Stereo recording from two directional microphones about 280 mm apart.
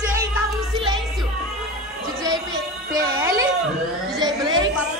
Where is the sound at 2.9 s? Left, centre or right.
Centre.